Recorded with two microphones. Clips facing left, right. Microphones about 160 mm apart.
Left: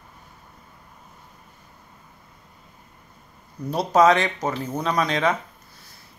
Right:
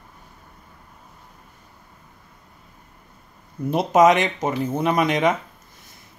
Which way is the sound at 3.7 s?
20° right (ahead or behind).